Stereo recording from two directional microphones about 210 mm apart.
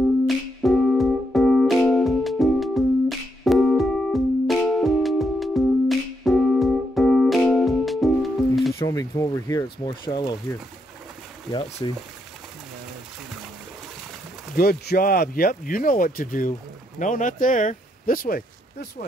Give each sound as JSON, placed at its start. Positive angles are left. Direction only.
{"t": 0.3, "sound": "music", "side_deg": 0}
{"t": 8.7, "sound": "speech", "side_deg": 15}
{"t": 11.8, "sound": "speech", "side_deg": 20}
{"t": 14.6, "sound": "speech", "side_deg": 45}